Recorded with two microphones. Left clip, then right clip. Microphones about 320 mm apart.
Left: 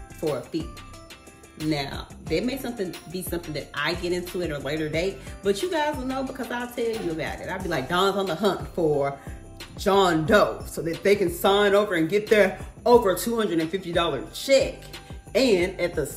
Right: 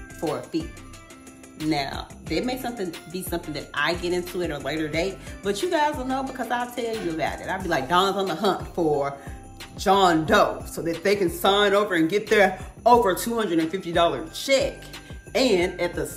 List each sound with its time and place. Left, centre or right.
0.2 s speech: centre
1.6 s speech: centre